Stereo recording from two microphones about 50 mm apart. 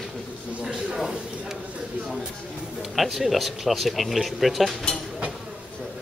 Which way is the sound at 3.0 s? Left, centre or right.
Centre.